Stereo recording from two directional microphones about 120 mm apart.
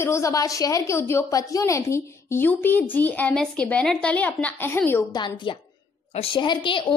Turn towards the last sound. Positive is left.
turn(degrees=45)  # may be behind; listen again after turning